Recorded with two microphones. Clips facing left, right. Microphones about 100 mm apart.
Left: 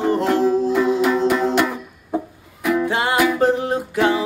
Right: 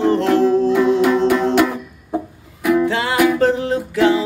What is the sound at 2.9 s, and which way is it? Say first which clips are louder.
Music: right 2 dB; 20° left (ahead or behind).